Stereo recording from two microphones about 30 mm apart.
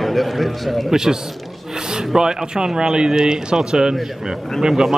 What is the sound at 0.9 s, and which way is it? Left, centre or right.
Speech, centre.